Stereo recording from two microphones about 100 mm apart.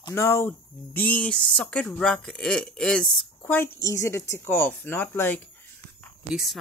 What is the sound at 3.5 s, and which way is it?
Speech, 25° left (ahead or behind).